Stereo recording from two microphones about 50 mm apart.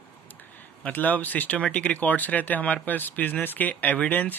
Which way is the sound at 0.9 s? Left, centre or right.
Left.